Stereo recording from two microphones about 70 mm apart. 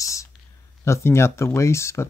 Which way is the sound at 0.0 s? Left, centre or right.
Left.